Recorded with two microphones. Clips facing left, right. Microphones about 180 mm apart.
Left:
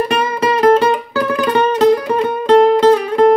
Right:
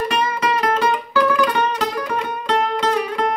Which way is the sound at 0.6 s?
30° left (ahead or behind).